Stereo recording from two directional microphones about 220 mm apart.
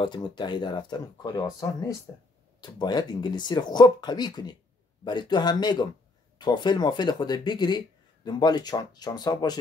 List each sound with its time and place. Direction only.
0.0 s speech: 20° left (ahead or behind)